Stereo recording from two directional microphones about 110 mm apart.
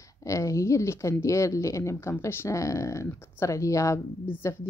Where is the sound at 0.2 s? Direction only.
30° left (ahead or behind).